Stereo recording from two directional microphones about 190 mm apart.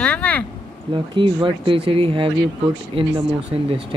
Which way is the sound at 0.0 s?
5° left (ahead or behind).